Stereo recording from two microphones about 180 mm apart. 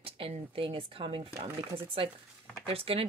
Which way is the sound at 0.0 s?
30° right (ahead or behind).